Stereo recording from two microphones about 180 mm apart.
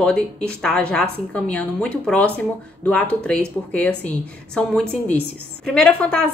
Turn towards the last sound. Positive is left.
turn(degrees=5)  # may be behind; listen again after turning